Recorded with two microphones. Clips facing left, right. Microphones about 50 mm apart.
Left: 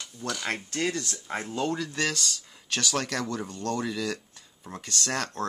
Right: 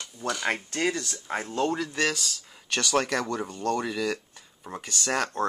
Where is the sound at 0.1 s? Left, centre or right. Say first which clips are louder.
Right 3 dB; centre.